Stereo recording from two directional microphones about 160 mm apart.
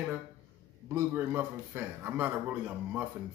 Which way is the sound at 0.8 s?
15° right (ahead or behind).